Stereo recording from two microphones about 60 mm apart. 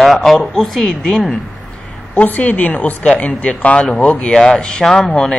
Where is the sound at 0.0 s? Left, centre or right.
Centre.